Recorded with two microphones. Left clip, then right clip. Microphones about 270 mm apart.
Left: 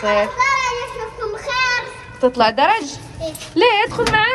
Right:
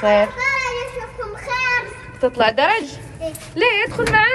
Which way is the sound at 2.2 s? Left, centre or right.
Centre.